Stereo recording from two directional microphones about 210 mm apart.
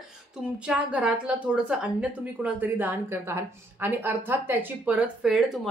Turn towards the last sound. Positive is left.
turn(degrees=0)  # may be behind; listen again after turning